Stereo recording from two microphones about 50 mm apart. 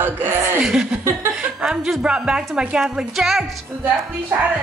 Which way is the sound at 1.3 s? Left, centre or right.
Centre.